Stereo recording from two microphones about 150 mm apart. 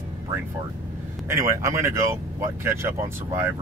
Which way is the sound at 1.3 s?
20° right (ahead or behind).